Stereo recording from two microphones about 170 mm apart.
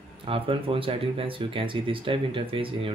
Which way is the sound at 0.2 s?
30° right (ahead or behind).